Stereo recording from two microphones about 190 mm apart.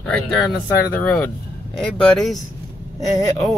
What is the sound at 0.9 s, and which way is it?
Speech, 5° left (ahead or behind).